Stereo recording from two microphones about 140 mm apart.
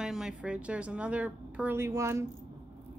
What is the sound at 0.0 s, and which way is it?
A woman's voice, 5° right (ahead or behind).